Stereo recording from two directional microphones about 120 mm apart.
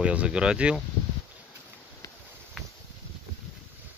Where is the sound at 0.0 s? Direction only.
10° right (ahead or behind).